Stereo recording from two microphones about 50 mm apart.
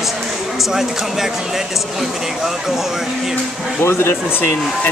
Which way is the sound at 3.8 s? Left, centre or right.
Left.